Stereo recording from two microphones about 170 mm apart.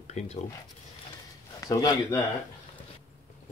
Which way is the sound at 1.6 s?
20° left (ahead or behind).